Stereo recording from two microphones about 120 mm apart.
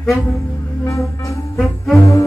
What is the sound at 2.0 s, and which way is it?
Music, 25° left (ahead or behind).